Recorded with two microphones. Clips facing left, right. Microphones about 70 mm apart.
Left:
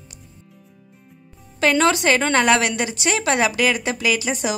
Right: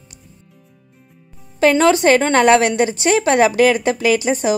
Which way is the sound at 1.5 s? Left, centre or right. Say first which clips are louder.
Right 5 dB; right.